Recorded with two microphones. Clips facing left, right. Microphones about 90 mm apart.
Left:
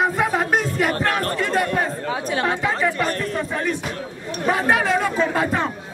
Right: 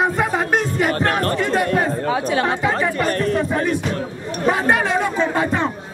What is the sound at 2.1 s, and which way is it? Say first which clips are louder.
Speech: right 4 dB; 90° right.